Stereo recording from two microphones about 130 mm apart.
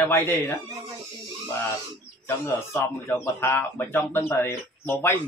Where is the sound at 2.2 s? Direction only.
20° left (ahead or behind).